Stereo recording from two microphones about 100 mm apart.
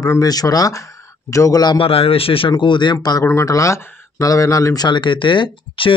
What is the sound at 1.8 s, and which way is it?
Speech, 70° left (ahead or behind).